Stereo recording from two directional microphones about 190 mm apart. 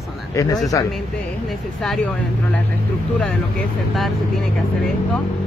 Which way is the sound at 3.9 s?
Centre (ahead or behind).